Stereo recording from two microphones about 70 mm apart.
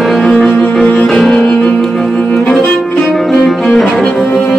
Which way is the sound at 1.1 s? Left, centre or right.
Centre.